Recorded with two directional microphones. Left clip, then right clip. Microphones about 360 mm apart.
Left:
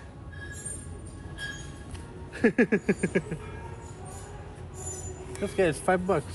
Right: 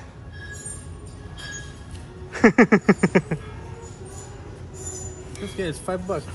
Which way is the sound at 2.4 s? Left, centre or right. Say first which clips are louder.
Right 8 dB; right.